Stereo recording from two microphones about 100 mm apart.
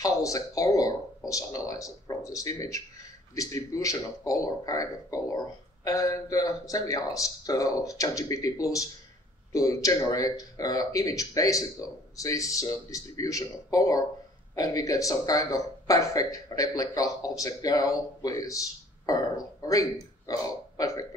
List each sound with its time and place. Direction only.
0.0 s speech: 35° left (ahead or behind)